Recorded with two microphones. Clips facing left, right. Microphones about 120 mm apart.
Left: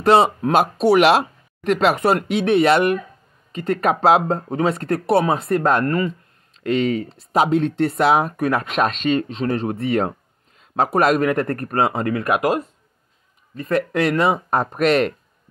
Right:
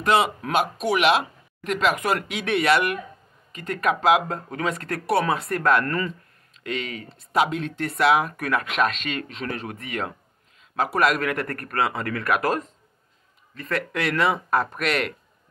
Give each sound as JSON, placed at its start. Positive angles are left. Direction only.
{"t": 0.0, "sound": "speech", "side_deg": 35}
{"t": 6.5, "sound": "speech", "side_deg": 35}